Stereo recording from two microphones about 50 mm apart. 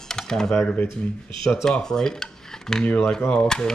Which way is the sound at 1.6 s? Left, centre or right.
Centre.